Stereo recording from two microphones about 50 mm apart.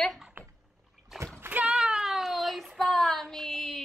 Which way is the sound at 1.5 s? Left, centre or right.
Right.